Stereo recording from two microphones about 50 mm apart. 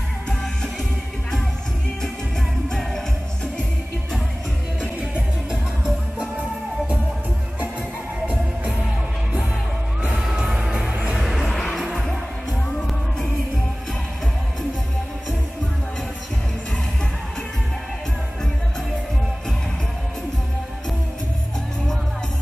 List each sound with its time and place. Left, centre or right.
0.3 s music: centre
5.5 s music: centre
10.2 s music: centre
10.9 s music: right
11.1 s music: centre